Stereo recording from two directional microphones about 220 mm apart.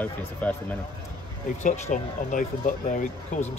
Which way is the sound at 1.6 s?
35° left (ahead or behind).